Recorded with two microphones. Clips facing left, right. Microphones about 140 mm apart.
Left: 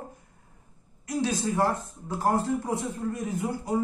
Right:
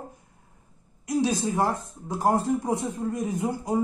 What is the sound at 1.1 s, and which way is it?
A man's voice, 15° right (ahead or behind).